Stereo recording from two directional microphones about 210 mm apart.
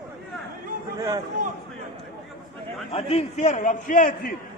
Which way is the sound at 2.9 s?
30° left (ahead or behind).